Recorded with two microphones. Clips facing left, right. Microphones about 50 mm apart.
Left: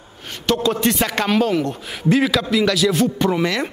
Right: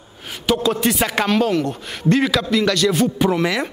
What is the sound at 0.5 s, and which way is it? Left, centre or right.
A man's voice, centre.